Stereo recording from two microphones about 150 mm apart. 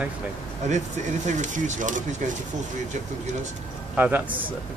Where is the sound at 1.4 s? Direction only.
60° right (ahead or behind).